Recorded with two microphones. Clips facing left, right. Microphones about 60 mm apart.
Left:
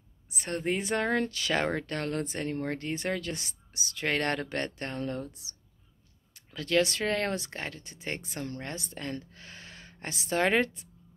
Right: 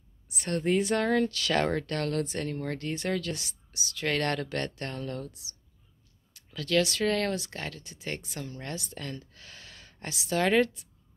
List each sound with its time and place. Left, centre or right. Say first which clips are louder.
0.3 s a woman's voice: right 4 dB; left